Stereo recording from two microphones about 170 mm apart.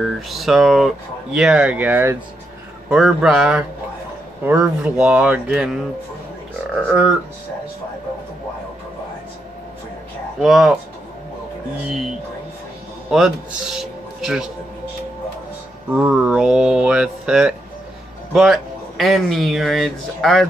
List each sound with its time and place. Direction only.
0.0 s speech: centre (ahead or behind)
6.9 s speech: 5° right (ahead or behind)
10.4 s speech: centre (ahead or behind)
13.1 s speech: 5° right (ahead or behind)
15.9 s speech: 5° right (ahead or behind)